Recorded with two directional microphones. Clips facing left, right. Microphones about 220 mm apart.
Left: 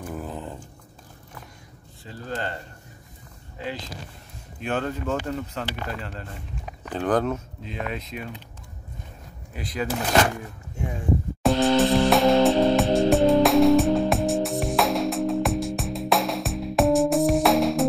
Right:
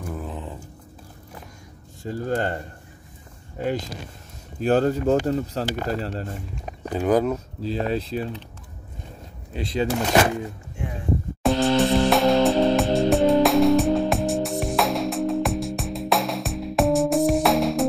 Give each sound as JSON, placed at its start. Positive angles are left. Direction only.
{"t": 0.1, "sound": "a sound", "side_deg": 0}
{"t": 2.0, "sound": "speech", "side_deg": -45}
{"t": 6.9, "sound": "speech", "side_deg": -10}
{"t": 7.3, "sound": "speech", "side_deg": -35}
{"t": 9.5, "sound": "speech", "side_deg": -25}
{"t": 11.4, "sound": "music", "side_deg": 0}